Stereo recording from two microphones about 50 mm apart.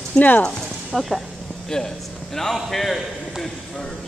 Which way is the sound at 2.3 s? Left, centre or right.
Centre.